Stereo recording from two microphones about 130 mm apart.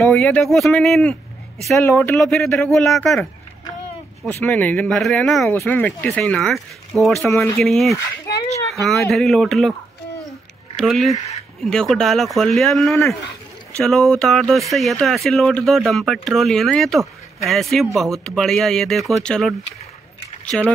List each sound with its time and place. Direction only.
0.0 s speech: 10° left (ahead or behind)
1.8 s speech: 20° left (ahead or behind)
2.1 s speech: 5° left (ahead or behind)
4.3 s speech: 15° left (ahead or behind)
5.5 s speech: 15° left (ahead or behind)
9.1 s speech: centre (ahead or behind)
10.8 s speech: centre (ahead or behind)
20.5 s speech: 5° left (ahead or behind)